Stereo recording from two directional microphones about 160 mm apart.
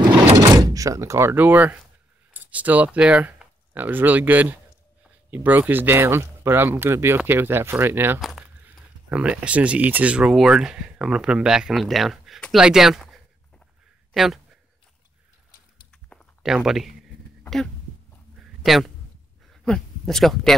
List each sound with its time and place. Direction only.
0.4 s speech: 20° right (ahead or behind)
8.2 s speech: centre (ahead or behind)
15.9 s a sound: 5° left (ahead or behind)
18.6 s speech: centre (ahead or behind)